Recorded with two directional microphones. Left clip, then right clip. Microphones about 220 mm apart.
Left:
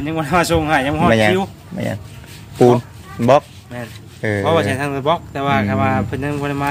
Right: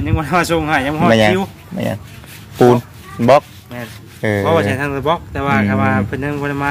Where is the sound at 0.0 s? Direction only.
10° right (ahead or behind).